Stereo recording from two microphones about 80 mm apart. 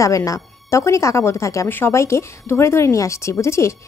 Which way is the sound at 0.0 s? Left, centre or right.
Left.